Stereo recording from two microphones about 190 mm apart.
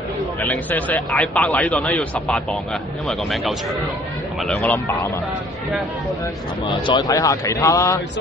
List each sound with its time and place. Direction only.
0.4 s speech: 10° left (ahead or behind)
6.9 s speech: 20° left (ahead or behind)